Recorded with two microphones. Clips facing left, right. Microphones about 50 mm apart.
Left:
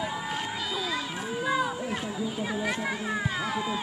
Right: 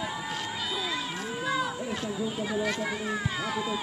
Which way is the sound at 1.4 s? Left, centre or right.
Centre.